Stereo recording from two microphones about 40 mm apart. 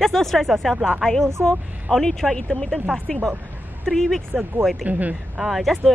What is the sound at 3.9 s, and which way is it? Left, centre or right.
Speech, centre.